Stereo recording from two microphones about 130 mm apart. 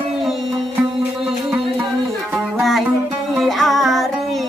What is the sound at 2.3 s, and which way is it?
Music, centre (ahead or behind).